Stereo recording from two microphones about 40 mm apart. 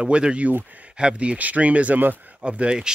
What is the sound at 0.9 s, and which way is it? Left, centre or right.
Speech, right.